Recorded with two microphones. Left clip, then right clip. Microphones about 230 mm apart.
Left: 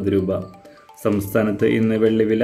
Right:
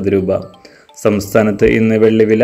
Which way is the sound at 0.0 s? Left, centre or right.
Centre.